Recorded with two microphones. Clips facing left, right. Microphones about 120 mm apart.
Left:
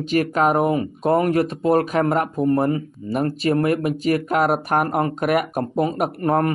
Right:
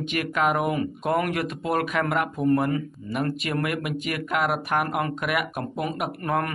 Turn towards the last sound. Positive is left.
turn(degrees=35)  # may be behind; listen again after turning